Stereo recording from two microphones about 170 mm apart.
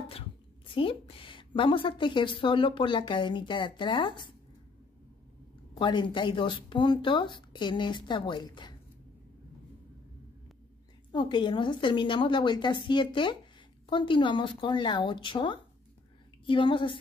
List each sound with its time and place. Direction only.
0.7 s a woman's voice: 30° left (ahead or behind)
5.8 s a woman's voice: 30° left (ahead or behind)
11.1 s a woman's voice: 25° left (ahead or behind)